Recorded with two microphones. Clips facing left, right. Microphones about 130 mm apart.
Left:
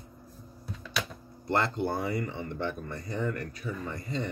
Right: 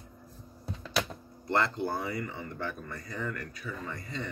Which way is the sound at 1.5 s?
25° left (ahead or behind).